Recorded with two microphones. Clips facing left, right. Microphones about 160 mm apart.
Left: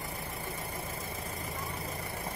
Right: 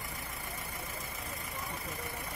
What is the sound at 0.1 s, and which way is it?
Vehicle, 30° left (ahead or behind).